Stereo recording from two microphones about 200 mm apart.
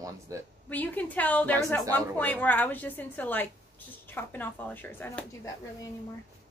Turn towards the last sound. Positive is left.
turn(degrees=15)  # may be behind; listen again after turning